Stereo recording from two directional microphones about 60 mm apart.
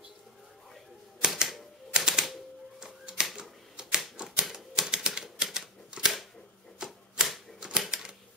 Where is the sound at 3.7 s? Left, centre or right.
Centre.